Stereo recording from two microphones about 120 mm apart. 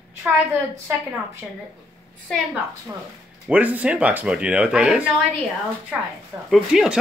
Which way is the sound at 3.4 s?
10° right (ahead or behind).